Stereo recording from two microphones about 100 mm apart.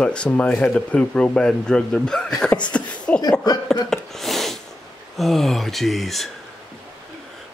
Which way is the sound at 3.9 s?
5° left (ahead or behind).